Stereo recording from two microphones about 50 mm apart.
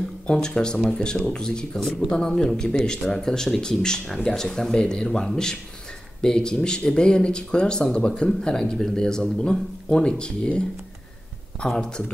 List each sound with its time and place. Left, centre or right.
0.5 s speech: centre
1.8 s speech: centre
2.2 s speech: centre
11.6 s speech: centre